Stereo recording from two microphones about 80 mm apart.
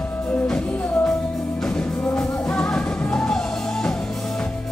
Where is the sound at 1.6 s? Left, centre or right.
Centre.